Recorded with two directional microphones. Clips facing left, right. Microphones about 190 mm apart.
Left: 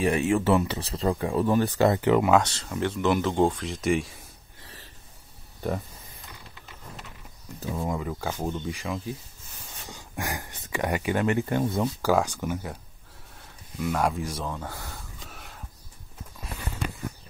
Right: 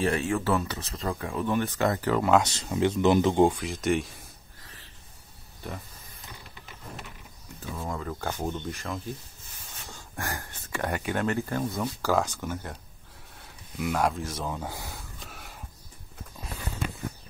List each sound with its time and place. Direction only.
0.0 s speech: 15° left (ahead or behind); by 1.9 s 35° left (ahead or behind)
1.9 s speech: 20° left (ahead or behind)
2.4 s speech: 15° right (ahead or behind); by 4.2 s centre (ahead or behind)
7.7 s speech: 15° left (ahead or behind)
9.8 s a sound: 15° left (ahead or behind)
10.7 s speech: 15° left (ahead or behind)
11.0 s speech: 5° left (ahead or behind)
11.2 s speech: 20° left (ahead or behind)
13.4 s a sound: centre (ahead or behind)
14.3 s speech: 10° right (ahead or behind)
15.2 s a sound: centre (ahead or behind)